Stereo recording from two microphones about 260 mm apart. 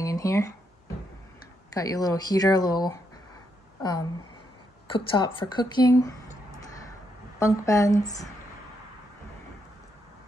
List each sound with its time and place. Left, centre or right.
0.0 s a sound: centre
1.7 s speech: centre
4.8 s speech: centre
7.3 s speech: centre